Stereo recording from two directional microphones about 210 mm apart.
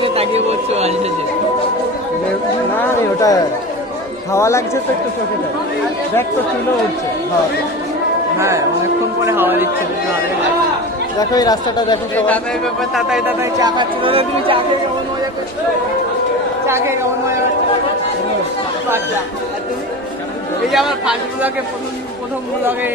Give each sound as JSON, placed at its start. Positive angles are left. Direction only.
{"t": 0.0, "sound": "speech", "side_deg": -30}
{"t": 2.8, "sound": "speech", "side_deg": 15}
{"t": 8.4, "sound": "a woman's voice", "side_deg": -15}
{"t": 11.1, "sound": "speech", "side_deg": 20}
{"t": 12.3, "sound": "speech", "side_deg": 0}
{"t": 13.4, "sound": "speech", "side_deg": -20}
{"t": 16.6, "sound": "a woman's voice", "side_deg": -10}
{"t": 20.7, "sound": "speech", "side_deg": -5}